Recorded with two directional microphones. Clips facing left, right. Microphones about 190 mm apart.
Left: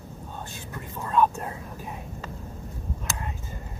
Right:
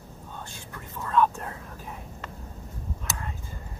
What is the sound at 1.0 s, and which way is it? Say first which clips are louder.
Whispering: left 1 dB; 15° left (ahead or behind).